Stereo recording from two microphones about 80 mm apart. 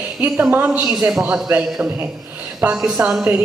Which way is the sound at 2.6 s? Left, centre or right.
Centre.